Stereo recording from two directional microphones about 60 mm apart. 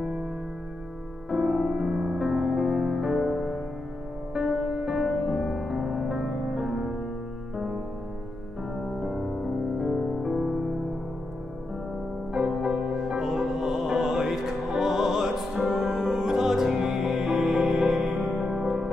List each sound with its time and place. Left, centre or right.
1.3 s music: centre
4.4 s music: centre
5.0 s music: centre
6.0 s music: centre
9.0 s music: centre
12.3 s music: centre
18.2 s music: centre